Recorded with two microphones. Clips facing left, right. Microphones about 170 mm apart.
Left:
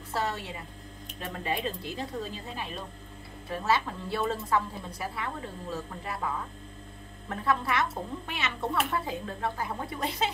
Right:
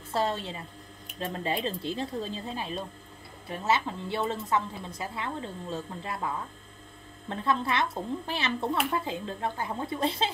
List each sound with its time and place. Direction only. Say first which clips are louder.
0.1 s a woman's voice: right 3 dB; 25° right (ahead or behind)
7.2 s a woman's voice: even; 25° right (ahead or behind)